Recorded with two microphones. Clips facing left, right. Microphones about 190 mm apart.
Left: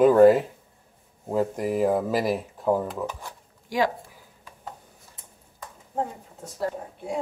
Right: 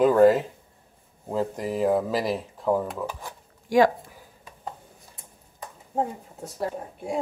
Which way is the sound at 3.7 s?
50° right (ahead or behind).